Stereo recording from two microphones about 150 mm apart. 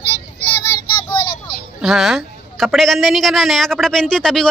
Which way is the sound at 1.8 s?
Centre (ahead or behind).